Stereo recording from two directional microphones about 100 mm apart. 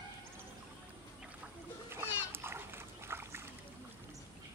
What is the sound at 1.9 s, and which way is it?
Splash, 20° right (ahead or behind).